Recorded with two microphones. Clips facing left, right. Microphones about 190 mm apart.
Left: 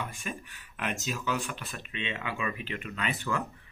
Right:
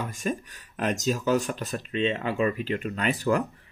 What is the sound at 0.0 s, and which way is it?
Speech, 40° right (ahead or behind).